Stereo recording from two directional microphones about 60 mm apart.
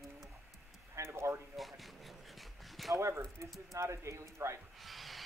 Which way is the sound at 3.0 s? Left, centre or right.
Right.